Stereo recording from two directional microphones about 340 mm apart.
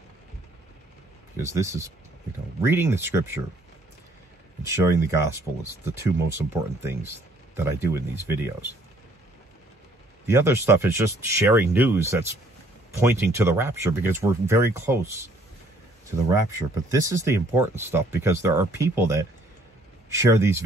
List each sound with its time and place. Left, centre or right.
1.3 s speech: centre
4.6 s speech: centre
10.2 s speech: centre